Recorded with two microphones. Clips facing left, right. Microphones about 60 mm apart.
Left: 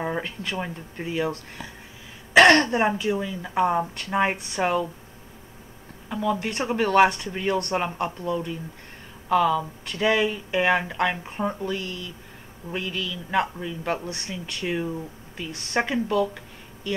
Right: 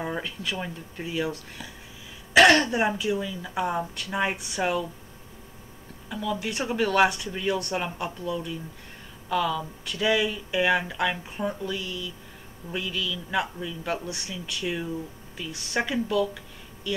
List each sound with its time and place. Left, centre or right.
0.0 s speech: left
1.6 s speech: left
3.2 s speech: left
6.0 s speech: left
14.1 s speech: left
15.5 s speech: left
15.8 s speech: left